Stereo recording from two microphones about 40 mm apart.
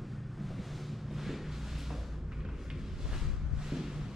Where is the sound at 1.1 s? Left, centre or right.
Centre.